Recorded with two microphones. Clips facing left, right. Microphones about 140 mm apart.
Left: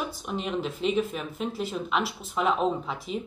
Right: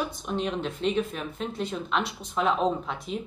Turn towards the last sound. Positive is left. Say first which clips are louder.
# even
turn(degrees=0)  # may be behind; listen again after turning